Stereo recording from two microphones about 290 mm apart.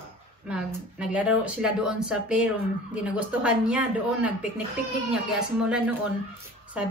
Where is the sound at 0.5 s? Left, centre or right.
Centre.